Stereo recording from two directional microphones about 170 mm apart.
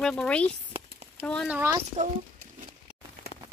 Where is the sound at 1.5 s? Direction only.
15° right (ahead or behind).